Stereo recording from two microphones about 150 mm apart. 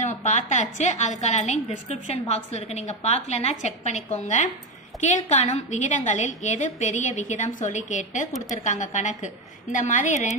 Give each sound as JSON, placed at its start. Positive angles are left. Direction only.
{"t": 0.0, "sound": "a woman's voice", "side_deg": 50}